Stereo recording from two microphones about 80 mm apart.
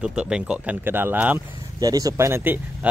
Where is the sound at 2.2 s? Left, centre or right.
Right.